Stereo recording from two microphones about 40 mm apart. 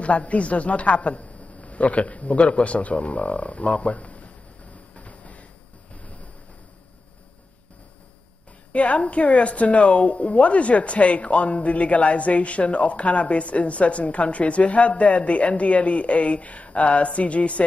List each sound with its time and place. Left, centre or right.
0.0 s a woman's voice: left
4.9 s train: left
8.7 s a woman's voice: left